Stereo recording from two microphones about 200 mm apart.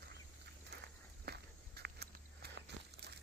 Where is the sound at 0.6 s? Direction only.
55° right (ahead or behind).